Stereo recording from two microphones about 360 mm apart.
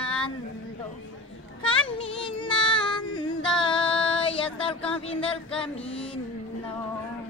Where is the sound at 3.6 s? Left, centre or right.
Centre.